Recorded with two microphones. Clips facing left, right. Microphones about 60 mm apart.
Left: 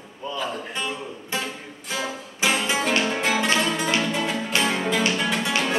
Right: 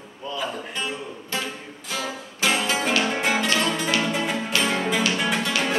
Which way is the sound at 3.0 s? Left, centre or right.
Centre.